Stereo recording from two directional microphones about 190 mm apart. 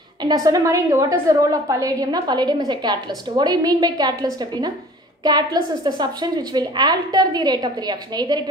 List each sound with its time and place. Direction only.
0.2 s a woman's voice: 20° right (ahead or behind)